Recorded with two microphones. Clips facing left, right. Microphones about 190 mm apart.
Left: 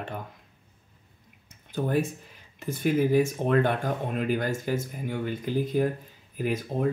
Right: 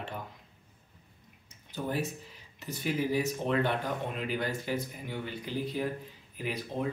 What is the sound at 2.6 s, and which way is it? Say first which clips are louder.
Speech: left 7 dB; 50° left (ahead or behind).